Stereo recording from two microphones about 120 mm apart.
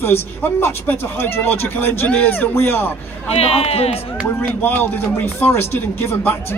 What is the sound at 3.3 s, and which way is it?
Speech, 55° left (ahead or behind).